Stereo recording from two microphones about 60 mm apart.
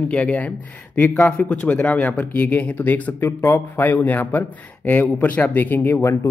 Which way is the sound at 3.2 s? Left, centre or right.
Left.